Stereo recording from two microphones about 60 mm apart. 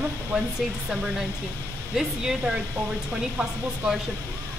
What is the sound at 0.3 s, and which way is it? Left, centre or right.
Speech, centre.